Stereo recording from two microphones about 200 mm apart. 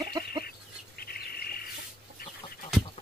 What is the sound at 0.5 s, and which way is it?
Bird, 50° left (ahead or behind).